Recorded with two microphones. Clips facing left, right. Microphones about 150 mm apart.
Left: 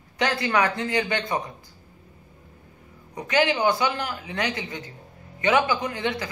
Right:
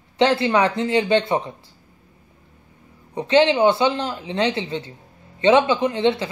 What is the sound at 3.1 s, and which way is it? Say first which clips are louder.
Speech: right 7 dB; 25° right (ahead or behind).